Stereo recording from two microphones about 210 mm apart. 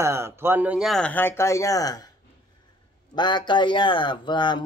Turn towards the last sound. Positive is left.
turn(degrees=20)  # may be behind; listen again after turning